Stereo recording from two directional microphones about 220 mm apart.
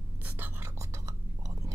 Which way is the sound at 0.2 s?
10° right (ahead or behind).